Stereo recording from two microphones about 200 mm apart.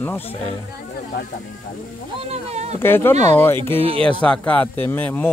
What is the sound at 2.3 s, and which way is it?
Speech, 30° right (ahead or behind).